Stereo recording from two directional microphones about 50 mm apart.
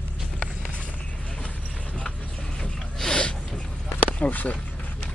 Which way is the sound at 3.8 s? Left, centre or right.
Left.